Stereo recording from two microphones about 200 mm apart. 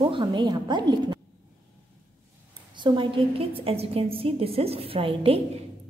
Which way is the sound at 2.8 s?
25° right (ahead or behind).